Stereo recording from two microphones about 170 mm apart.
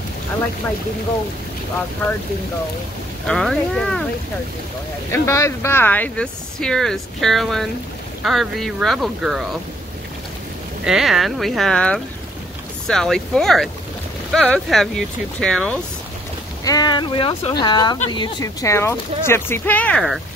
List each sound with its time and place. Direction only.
3.3 s speech: 5° left (ahead or behind)
5.1 s speech: 15° left (ahead or behind); by 9.4 s centre (ahead or behind)
10.8 s speech: centre (ahead or behind)
16.6 s speech: 25° left (ahead or behind); by 20.2 s 5° left (ahead or behind)